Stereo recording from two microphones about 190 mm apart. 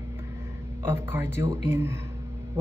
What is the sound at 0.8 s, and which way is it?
A man's voice, 10° right (ahead or behind).